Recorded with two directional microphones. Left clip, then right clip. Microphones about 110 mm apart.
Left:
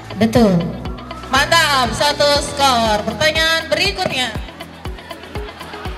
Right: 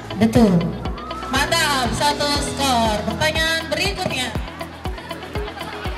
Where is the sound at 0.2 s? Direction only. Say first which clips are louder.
Left 3 dB; 15° left (ahead or behind).